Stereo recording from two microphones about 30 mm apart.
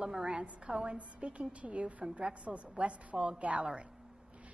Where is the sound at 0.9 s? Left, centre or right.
Right.